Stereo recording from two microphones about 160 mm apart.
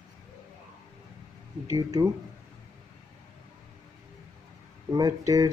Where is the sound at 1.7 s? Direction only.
20° right (ahead or behind).